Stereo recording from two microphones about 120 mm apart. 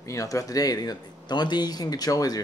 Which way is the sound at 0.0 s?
25° left (ahead or behind).